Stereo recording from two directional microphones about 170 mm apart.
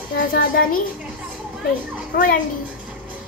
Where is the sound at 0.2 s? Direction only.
60° left (ahead or behind).